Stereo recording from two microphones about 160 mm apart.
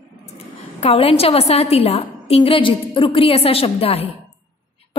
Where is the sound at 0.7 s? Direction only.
40° left (ahead or behind).